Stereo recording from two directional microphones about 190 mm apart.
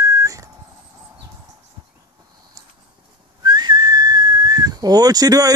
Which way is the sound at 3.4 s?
20° right (ahead or behind).